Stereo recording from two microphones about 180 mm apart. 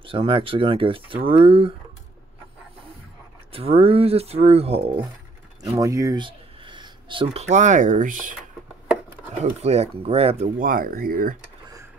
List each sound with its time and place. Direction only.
0.0 s speech: 30° right (ahead or behind)
3.5 s speech: 30° right (ahead or behind)
5.6 s speech: 20° right (ahead or behind); by 8.4 s 45° right (ahead or behind)
9.4 s speech: 35° right (ahead or behind)
10.6 s speech: 50° right (ahead or behind)